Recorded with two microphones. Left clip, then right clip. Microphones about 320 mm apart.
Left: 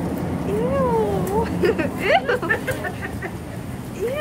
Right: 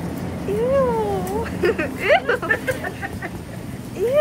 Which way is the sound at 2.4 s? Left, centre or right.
Centre.